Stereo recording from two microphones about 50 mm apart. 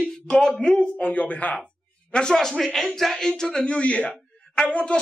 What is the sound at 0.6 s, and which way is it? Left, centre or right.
Speech, centre.